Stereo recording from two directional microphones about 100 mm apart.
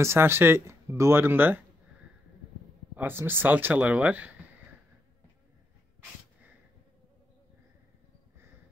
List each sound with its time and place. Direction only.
0.0 s speech: 25° right (ahead or behind)
3.0 s speech: 20° right (ahead or behind)